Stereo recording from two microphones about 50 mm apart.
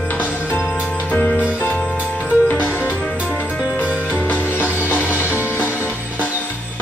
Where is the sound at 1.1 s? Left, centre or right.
Left.